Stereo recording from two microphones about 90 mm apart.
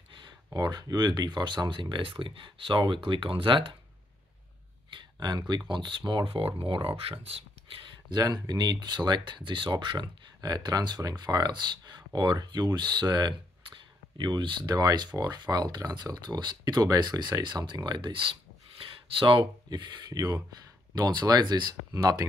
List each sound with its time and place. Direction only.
0.5 s speech: 50° right (ahead or behind); by 3.7 s 75° right (ahead or behind)
4.9 s a sound: 55° right (ahead or behind)
5.7 s speech: 60° right (ahead or behind); by 7.8 s 90° right
8.1 s speech: 50° right (ahead or behind); by 19.4 s 75° right (ahead or behind)
19.7 s speech: 55° right (ahead or behind)